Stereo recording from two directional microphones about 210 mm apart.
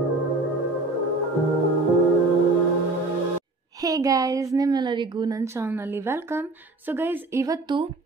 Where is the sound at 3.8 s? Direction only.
15° right (ahead or behind).